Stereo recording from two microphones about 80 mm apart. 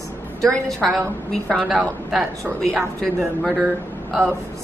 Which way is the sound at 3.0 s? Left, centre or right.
Centre.